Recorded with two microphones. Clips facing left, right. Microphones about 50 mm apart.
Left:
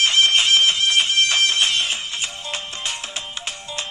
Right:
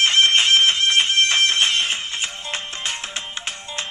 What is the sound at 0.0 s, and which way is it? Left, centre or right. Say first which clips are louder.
Music: right 1 dB; right.